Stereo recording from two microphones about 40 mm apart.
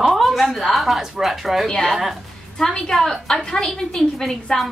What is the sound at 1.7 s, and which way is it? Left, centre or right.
A woman's voice, centre.